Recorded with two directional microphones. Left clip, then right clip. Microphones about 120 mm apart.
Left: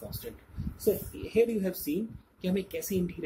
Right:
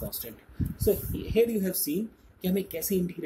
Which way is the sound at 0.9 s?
30° right (ahead or behind).